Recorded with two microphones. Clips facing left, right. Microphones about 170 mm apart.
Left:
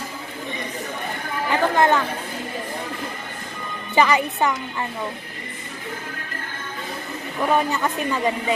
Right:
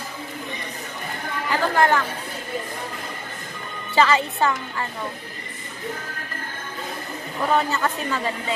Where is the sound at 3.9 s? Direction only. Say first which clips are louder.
Left 1 dB; 15° left (ahead or behind).